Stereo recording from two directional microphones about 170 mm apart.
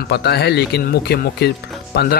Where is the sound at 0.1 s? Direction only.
75° left (ahead or behind).